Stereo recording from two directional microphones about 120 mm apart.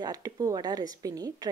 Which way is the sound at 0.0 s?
30° right (ahead or behind).